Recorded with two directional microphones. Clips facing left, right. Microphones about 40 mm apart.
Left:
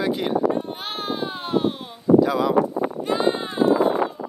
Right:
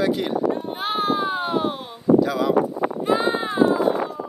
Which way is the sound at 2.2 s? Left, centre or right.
Centre.